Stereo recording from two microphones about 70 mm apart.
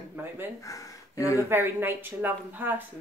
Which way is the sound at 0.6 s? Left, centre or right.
Left.